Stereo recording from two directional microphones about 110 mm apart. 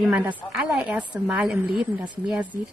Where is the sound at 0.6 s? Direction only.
15° right (ahead or behind).